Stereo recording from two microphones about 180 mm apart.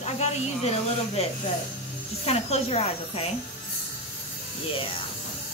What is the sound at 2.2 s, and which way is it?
A woman's voice, 35° left (ahead or behind).